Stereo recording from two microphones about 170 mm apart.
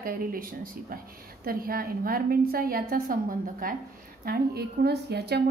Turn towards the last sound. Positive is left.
turn(degrees=-70)  # may be behind; listen again after turning